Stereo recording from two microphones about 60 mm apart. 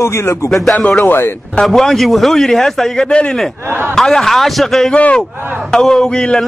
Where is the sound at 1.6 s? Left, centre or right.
Centre.